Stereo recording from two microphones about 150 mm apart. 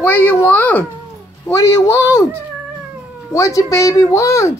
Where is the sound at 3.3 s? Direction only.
20° left (ahead or behind).